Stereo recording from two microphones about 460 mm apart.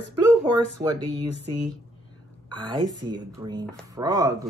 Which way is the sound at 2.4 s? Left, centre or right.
Centre.